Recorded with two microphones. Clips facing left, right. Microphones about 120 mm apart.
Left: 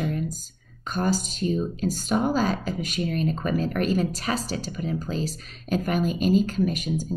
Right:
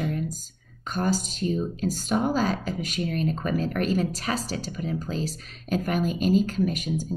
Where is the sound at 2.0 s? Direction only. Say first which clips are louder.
Left 1 dB; 15° left (ahead or behind).